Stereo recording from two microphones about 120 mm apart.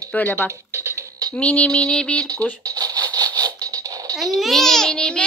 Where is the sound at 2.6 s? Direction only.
30° right (ahead or behind).